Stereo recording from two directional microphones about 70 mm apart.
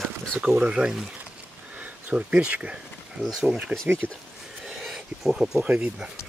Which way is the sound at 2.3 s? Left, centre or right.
Centre.